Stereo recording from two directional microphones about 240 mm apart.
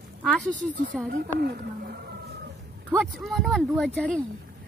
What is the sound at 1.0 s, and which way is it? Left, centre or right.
A woman's voice, right.